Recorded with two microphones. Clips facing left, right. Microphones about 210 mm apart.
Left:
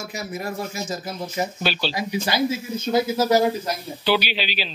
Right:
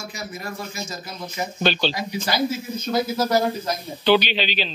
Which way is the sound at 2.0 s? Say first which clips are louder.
Left 1 dB; 25° left (ahead or behind).